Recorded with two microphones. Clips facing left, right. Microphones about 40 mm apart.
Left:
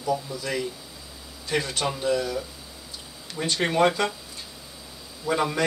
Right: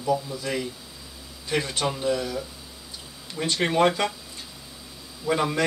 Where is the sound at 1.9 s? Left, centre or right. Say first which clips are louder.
Even; centre.